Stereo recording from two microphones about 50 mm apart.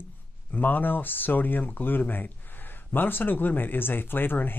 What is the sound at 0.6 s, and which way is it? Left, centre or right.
Speech, left.